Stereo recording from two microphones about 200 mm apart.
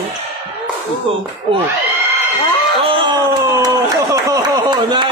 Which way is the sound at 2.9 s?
25° right (ahead or behind).